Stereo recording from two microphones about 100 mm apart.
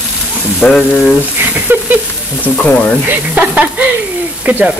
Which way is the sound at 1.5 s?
15° right (ahead or behind).